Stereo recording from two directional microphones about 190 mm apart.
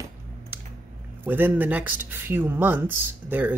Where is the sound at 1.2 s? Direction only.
10° right (ahead or behind).